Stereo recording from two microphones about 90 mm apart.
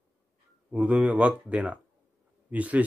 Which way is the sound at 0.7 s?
15° right (ahead or behind).